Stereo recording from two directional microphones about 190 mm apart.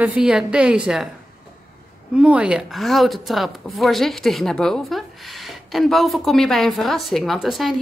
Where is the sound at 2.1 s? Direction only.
5° right (ahead or behind).